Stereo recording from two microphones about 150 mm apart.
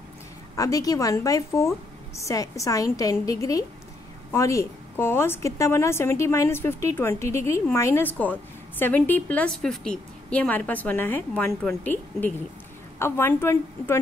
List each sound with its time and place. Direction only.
0.6 s a woman's voice: 20° left (ahead or behind)